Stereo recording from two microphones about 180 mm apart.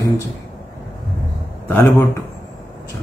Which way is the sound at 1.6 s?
15° left (ahead or behind).